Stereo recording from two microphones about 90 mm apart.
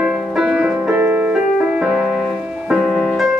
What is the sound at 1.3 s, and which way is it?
Music, 10° right (ahead or behind).